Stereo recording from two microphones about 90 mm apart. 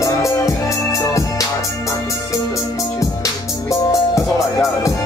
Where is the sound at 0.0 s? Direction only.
35° left (ahead or behind).